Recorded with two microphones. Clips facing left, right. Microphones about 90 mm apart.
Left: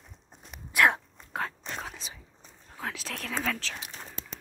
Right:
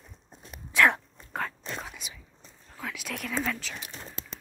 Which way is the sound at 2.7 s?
30° left (ahead or behind).